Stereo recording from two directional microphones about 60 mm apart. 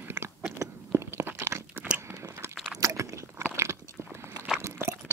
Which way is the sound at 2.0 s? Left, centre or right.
Right.